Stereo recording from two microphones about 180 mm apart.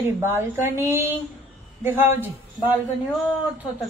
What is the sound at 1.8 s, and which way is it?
Speech, 10° right (ahead or behind).